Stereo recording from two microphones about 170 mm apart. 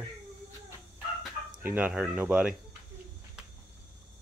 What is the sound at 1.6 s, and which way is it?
Speech, 10° right (ahead or behind).